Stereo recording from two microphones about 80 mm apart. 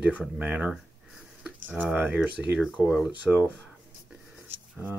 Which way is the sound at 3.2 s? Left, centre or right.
Centre.